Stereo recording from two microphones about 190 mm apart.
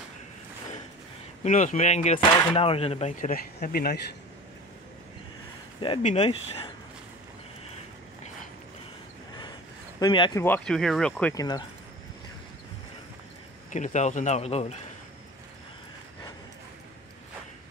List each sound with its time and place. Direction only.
1.4 s speech: 40° left (ahead or behind)
6.0 s speech: 35° left (ahead or behind)
9.9 s speech: 25° left (ahead or behind)
10.4 s speech: 5° left (ahead or behind)
11.3 s speech: 20° left (ahead or behind)
13.7 s speech: 40° left (ahead or behind)